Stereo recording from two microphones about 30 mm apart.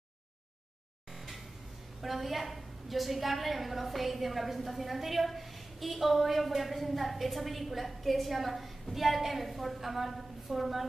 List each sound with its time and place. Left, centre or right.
2.0 s a woman's voice: centre